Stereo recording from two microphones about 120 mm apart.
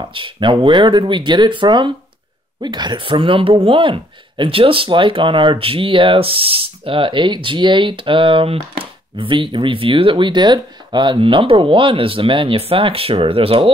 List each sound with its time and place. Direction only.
0.1 s speech: 45° right (ahead or behind)